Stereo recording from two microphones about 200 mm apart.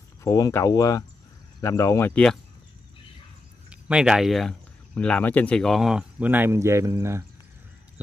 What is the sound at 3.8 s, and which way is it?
Speech, 5° right (ahead or behind).